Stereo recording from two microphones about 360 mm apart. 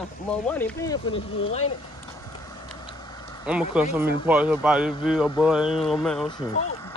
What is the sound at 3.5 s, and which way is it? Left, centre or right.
Speech, centre.